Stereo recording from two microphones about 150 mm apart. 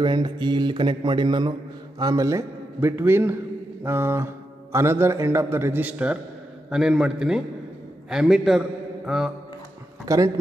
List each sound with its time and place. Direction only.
0.0 s mantra: 30° right (ahead or behind)
2.0 s a man's voice: 25° right (ahead or behind); by 9.3 s centre (ahead or behind)
10.0 s speech: 20° right (ahead or behind)